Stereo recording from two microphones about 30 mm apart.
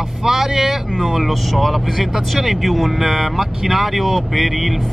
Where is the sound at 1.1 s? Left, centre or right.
Centre.